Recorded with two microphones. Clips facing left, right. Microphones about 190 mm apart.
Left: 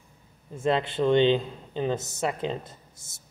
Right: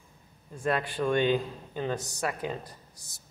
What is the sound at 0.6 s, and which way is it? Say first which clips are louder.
Speech: left 4 dB; 25° left (ahead or behind).